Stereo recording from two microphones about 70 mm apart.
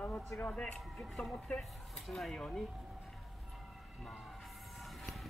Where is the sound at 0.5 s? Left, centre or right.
Centre.